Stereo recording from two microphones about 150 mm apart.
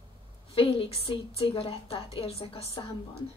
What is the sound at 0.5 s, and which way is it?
Speech, 40° left (ahead or behind).